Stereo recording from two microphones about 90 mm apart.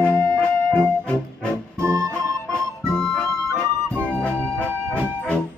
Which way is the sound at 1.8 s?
35° right (ahead or behind).